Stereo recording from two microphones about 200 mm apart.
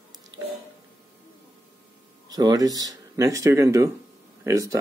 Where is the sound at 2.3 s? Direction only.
20° right (ahead or behind).